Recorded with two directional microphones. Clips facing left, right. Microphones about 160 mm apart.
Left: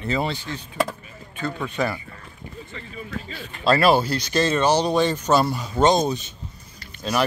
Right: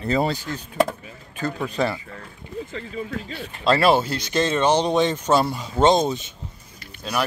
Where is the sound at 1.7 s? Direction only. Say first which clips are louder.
Right 1 dB; 30° right (ahead or behind).